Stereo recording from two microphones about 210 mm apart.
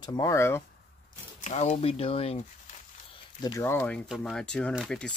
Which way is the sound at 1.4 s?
30° left (ahead or behind).